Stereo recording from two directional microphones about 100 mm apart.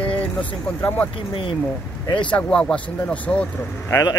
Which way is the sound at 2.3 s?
10° left (ahead or behind).